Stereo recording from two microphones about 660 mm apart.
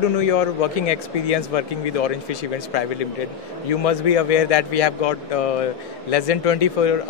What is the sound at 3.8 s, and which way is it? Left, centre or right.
A man's voice, left.